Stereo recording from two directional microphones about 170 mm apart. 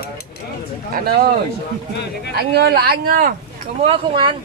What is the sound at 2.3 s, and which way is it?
Speech, 70° right (ahead or behind).